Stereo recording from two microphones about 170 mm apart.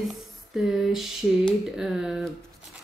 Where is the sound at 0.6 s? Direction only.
Centre (ahead or behind).